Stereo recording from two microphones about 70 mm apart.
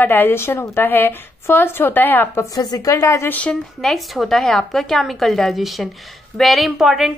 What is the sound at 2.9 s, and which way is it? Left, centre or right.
Speech, left.